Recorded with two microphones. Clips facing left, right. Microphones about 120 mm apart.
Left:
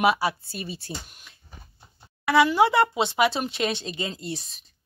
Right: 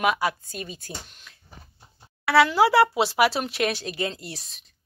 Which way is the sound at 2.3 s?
Centre (ahead or behind).